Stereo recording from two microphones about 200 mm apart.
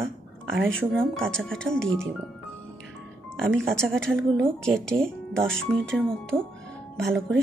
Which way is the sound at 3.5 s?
5° left (ahead or behind).